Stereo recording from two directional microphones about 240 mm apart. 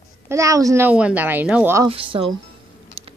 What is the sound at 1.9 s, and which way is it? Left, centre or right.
Speech, right.